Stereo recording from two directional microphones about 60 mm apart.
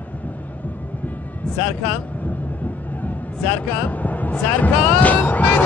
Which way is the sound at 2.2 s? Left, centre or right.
Left.